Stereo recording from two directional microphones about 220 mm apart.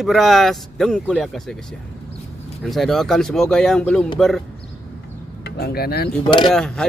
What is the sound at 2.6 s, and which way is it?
Speech, centre (ahead or behind).